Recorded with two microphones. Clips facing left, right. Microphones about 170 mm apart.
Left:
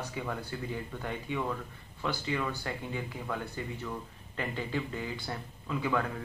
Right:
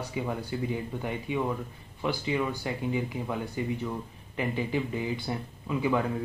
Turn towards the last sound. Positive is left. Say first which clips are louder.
# right 4 dB
turn(degrees=-15)  # may be behind; listen again after turning